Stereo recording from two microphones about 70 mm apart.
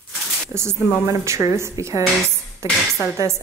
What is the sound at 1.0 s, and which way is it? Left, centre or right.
Speech, right.